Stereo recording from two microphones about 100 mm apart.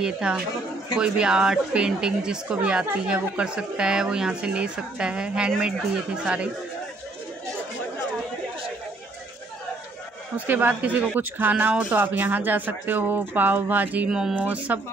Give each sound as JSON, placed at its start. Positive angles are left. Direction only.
{"t": 0.0, "sound": "speech", "side_deg": -10}
{"t": 10.3, "sound": "speech", "side_deg": -15}